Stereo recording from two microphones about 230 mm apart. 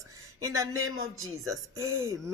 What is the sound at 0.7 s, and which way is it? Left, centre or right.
Speech, right.